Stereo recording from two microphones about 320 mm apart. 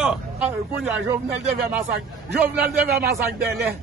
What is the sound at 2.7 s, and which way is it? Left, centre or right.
Speech, right.